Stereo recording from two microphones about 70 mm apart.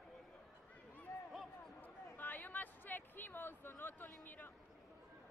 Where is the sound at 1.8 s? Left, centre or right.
Left.